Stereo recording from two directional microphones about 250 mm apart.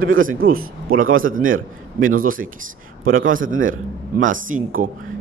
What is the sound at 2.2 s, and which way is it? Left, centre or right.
Speech, right.